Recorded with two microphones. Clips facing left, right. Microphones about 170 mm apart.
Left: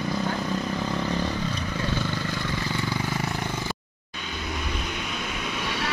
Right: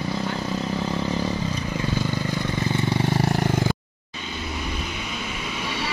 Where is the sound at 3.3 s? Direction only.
50° right (ahead or behind).